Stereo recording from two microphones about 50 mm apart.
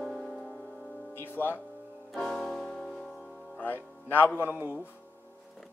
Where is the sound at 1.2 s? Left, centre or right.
Left.